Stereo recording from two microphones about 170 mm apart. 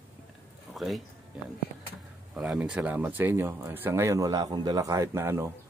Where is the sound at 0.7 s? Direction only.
Centre (ahead or behind).